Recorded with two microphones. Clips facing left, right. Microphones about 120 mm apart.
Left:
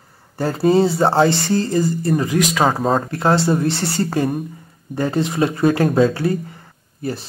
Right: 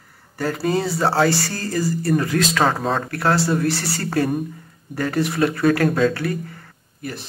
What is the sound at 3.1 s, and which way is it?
Speech, 20° left (ahead or behind).